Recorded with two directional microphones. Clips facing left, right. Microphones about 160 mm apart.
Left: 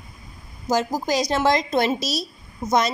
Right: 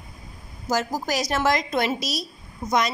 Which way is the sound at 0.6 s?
20° left (ahead or behind).